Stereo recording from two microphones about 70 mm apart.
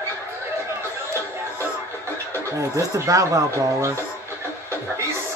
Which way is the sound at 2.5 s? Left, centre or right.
Right.